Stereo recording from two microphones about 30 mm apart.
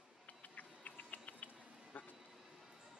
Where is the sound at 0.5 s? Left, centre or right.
Left.